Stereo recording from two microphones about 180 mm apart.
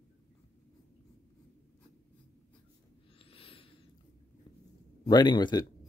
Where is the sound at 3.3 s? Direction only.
30° left (ahead or behind).